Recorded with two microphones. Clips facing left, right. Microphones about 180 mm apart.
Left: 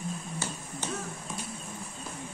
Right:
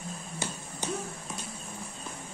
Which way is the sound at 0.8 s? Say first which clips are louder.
Right 2 dB; 15° right (ahead or behind).